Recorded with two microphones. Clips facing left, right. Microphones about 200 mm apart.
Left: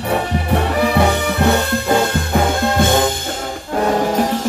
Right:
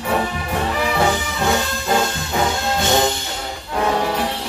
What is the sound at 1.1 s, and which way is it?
Music, 60° left (ahead or behind).